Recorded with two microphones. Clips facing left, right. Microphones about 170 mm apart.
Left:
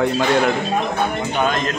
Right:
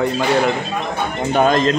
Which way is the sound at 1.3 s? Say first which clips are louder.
Right 6 dB; 35° right (ahead or behind).